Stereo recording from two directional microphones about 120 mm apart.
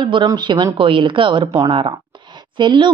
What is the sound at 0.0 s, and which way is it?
A woman's voice, 40° right (ahead or behind).